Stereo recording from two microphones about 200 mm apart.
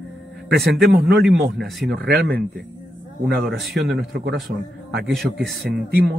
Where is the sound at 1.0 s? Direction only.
55° right (ahead or behind).